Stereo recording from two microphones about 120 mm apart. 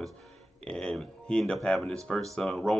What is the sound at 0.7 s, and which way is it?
Speech, 5° left (ahead or behind).